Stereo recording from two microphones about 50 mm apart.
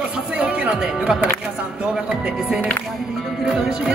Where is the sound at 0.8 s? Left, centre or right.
Centre.